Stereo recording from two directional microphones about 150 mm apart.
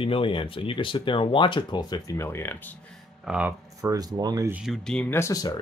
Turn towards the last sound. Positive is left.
turn(degrees=25)  # may be behind; listen again after turning